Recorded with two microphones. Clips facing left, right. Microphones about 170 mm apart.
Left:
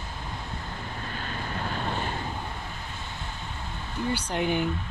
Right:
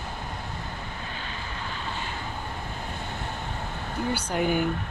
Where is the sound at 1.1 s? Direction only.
50° left (ahead or behind).